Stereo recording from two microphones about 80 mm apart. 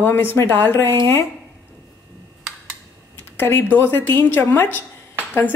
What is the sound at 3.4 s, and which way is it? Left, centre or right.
Speech, left.